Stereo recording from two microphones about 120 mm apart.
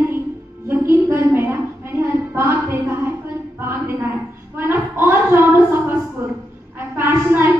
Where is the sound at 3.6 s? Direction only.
20° right (ahead or behind).